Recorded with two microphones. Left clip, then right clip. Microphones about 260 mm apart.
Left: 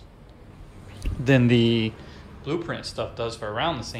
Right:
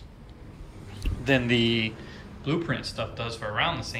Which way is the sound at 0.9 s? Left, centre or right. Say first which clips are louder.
Left 3 dB; left.